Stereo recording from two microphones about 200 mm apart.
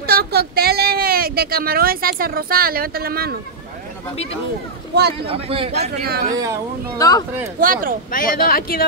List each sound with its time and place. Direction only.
0.0 s a sound: 50° right (ahead or behind)
5.2 s a man's voice: 30° right (ahead or behind)
5.8 s a man's voice: 50° right (ahead or behind)
7.0 s speech: 20° left (ahead or behind)
7.6 s a man's voice: 45° right (ahead or behind)
8.1 s speech: 45° left (ahead or behind)